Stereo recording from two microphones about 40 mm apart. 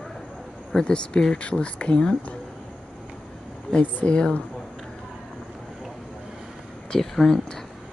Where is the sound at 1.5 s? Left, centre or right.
Left.